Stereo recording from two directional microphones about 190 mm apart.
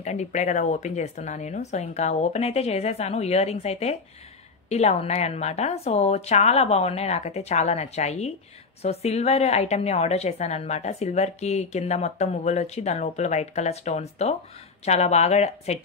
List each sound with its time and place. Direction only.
0.0 s a woman's voice: 40° left (ahead or behind)